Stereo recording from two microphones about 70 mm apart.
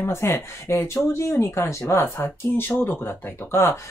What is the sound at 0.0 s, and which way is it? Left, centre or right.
Speech, left.